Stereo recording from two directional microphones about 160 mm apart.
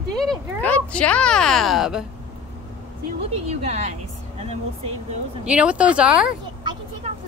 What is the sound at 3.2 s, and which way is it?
Speech, 40° right (ahead or behind).